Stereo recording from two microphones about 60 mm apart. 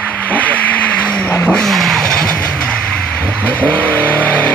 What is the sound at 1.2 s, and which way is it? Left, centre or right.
Vehicle, left.